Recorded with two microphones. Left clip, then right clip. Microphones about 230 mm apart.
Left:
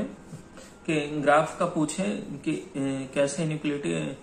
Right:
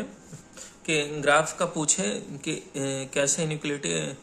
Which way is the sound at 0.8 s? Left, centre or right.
Right.